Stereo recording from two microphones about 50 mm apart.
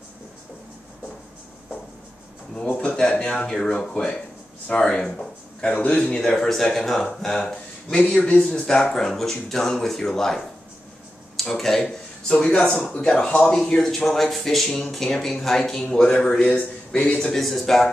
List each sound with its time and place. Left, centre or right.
3.0 s a sound: centre
3.6 s a man's voice: centre
6.3 s speech: centre
8.2 s a man's voice: left
8.5 s speech: centre
13.7 s speech: centre
16.4 s speech: left
17.0 s speech: centre
17.4 s speech: centre